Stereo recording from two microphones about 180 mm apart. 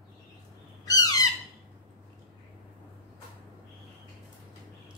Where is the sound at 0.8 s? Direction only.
20° left (ahead or behind).